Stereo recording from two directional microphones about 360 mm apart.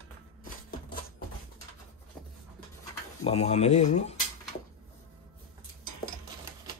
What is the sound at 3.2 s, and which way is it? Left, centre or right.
Speech, centre.